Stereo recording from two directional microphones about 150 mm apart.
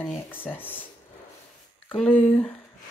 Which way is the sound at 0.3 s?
15° left (ahead or behind).